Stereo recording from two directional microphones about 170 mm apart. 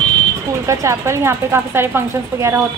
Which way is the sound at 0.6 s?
15° right (ahead or behind).